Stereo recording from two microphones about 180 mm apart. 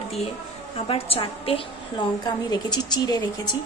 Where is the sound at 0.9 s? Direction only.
30° left (ahead or behind).